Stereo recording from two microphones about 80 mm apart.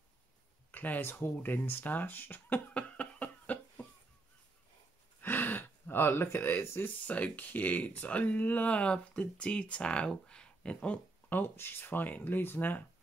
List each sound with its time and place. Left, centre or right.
0.7 s speech: left
5.2 s gasp: left
7.1 s speech: centre